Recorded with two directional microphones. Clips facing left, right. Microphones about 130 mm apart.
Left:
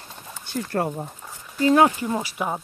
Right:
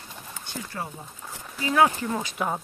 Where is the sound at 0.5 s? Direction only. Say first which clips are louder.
Left 10 dB; 55° left (ahead or behind).